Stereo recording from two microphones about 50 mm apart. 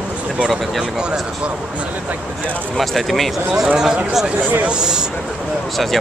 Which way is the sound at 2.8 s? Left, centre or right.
Centre.